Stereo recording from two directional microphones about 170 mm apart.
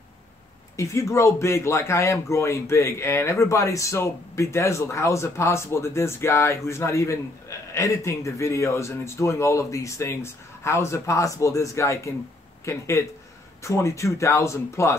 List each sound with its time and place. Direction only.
0.7 s speech: 15° left (ahead or behind)